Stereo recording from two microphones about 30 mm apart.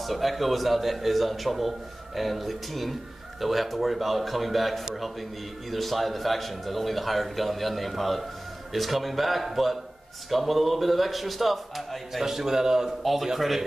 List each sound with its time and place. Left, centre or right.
0.0 s speech: centre
12.4 s a man's voice: centre
13.0 s speech: centre